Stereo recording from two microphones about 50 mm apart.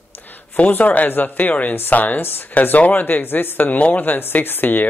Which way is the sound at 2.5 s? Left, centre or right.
Left.